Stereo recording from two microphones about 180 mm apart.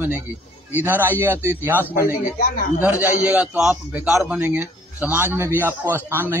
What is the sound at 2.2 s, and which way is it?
Speech, 50° left (ahead or behind).